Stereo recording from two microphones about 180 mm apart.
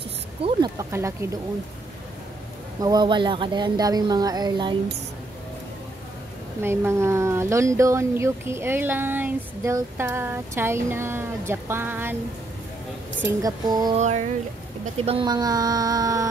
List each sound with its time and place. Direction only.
0.4 s speech: 25° right (ahead or behind)
2.8 s speech: 20° right (ahead or behind)
6.6 s speech: 15° right (ahead or behind)
13.2 s speech: 20° right (ahead or behind)
13.9 s a sound: 40° right (ahead or behind)
15.0 s speech: 30° right (ahead or behind)